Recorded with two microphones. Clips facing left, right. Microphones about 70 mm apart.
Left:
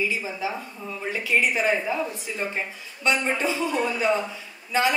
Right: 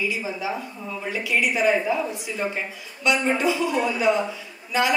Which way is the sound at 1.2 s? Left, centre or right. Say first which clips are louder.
Right 1 dB; left.